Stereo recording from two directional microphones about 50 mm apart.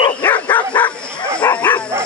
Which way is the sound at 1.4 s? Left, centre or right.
Left.